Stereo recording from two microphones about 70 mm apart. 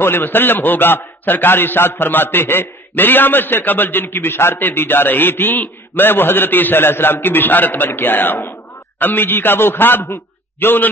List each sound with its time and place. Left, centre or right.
0.0 s a man's voice: left